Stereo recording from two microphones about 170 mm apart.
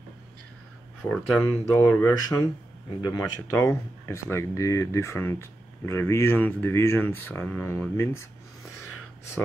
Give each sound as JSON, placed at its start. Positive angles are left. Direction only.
{"t": 1.0, "sound": "speech", "side_deg": 5}
{"t": 1.7, "sound": "speech", "side_deg": 15}